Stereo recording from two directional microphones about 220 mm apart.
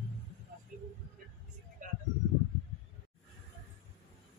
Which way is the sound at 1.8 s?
35° right (ahead or behind).